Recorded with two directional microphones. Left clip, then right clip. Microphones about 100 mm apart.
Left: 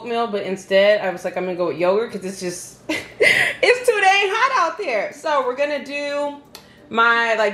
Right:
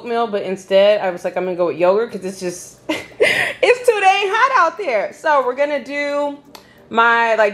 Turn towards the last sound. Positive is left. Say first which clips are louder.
# right 3 dB
turn(degrees=-15)  # may be behind; listen again after turning